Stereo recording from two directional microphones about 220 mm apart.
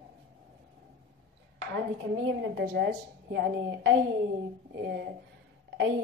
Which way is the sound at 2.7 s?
50° right (ahead or behind).